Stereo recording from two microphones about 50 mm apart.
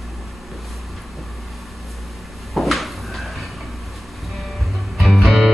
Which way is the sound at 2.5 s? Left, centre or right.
Centre.